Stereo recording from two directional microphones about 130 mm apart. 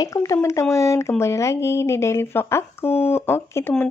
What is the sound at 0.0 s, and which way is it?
Speech, 25° left (ahead or behind).